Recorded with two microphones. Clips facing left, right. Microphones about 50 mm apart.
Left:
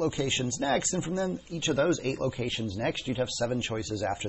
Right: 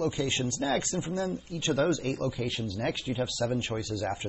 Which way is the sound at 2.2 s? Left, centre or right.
Centre.